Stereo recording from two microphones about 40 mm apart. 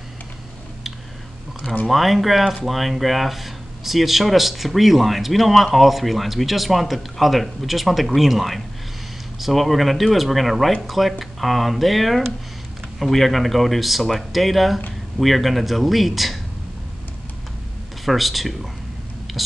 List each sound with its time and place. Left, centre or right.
1.9 s speech: centre
18.0 s speech: centre
19.3 s whispering: centre